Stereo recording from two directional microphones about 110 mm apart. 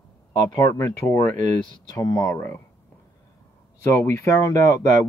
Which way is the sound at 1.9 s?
30° left (ahead or behind).